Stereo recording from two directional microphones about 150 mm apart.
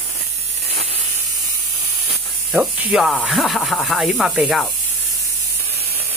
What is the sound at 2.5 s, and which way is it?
Speech, 5° right (ahead or behind).